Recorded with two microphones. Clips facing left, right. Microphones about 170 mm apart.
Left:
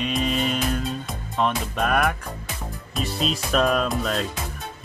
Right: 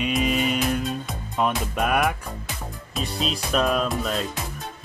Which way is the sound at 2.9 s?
Centre (ahead or behind).